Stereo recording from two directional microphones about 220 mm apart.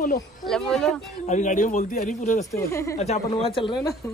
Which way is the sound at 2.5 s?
15° left (ahead or behind).